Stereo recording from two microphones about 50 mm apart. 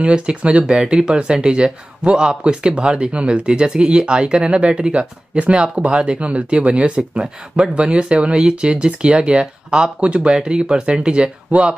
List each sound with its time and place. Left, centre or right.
0.0 s speech: right